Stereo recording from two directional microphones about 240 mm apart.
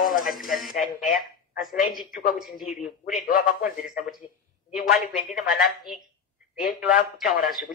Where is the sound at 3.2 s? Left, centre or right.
Left.